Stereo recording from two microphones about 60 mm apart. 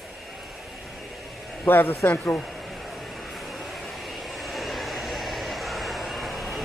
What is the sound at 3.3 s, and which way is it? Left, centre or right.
Vehicle, centre.